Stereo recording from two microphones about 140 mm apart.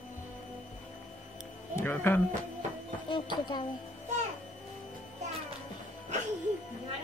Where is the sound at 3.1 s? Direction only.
35° left (ahead or behind).